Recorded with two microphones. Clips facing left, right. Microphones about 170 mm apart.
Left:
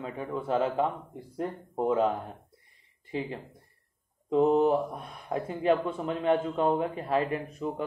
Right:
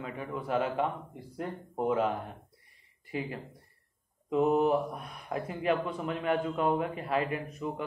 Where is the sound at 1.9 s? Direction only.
30° left (ahead or behind).